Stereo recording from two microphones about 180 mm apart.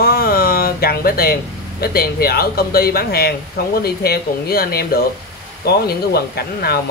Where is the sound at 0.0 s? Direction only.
55° left (ahead or behind).